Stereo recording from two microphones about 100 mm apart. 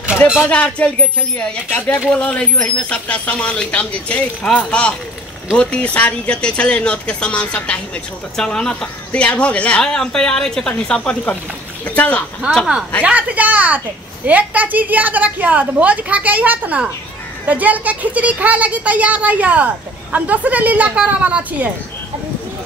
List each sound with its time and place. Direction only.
0.5 s speech: 15° left (ahead or behind)
13.0 s a child's voice: 15° right (ahead or behind)